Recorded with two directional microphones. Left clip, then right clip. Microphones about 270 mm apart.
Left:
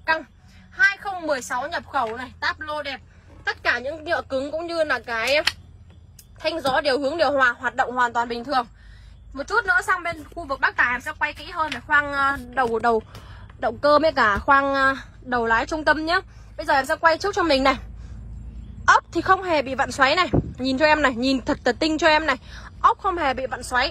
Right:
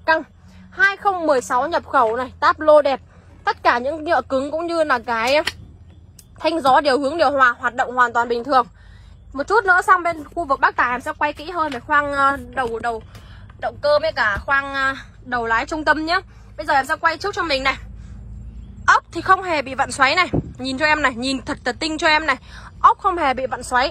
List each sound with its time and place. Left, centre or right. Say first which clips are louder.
0.7 s a woman's voice: right 3 dB; centre
3.7 s a woman's voice: right 6 dB; centre
11.0 s a woman's voice: right 4 dB; centre
11.4 s a woman's voice: right 3 dB; centre
12.8 s a woman's voice: left 4 dB; left
18.9 s a woman's voice: right 2 dB; centre